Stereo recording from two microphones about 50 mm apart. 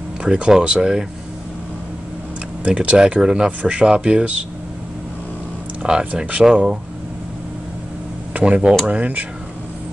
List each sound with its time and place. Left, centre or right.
0.2 s speech: centre
2.6 s speech: right
5.9 s speech: centre
8.5 s speech: centre